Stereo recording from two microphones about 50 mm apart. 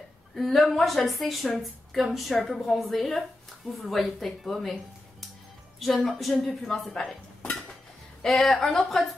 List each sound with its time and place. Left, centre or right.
0.4 s a woman's voice: centre
6.1 s a woman's voice: centre
8.2 s a woman's voice: centre